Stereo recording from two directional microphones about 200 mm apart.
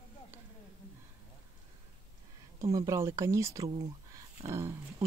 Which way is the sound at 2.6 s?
15° right (ahead or behind).